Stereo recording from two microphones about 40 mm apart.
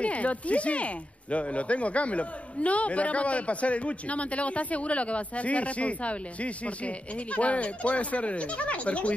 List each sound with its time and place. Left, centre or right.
0.0 s speech: left